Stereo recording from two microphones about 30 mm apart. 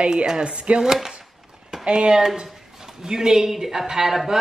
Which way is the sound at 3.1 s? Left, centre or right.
Centre.